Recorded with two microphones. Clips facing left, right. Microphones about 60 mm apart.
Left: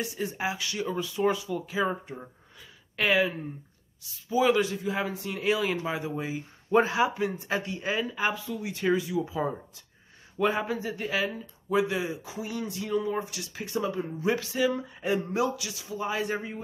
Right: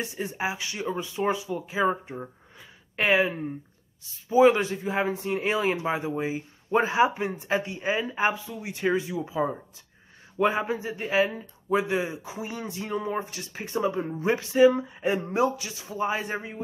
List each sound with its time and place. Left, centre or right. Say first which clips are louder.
0.0 s speech: right 1 dB; right
9.3 s speech: right 3 dB; centre
16.3 s speech: right 1 dB; centre